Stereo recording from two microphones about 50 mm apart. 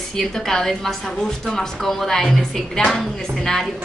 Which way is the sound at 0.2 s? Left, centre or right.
Centre.